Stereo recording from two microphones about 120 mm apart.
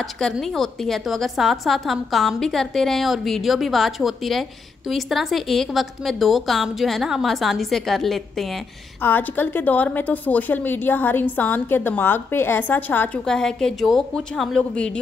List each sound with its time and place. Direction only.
0.0 s a woman's voice: centre (ahead or behind)
9.0 s a woman's voice: 15° left (ahead or behind)
13.2 s a woman's voice: 5° left (ahead or behind)